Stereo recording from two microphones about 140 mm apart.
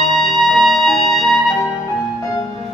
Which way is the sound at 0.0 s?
Centre (ahead or behind).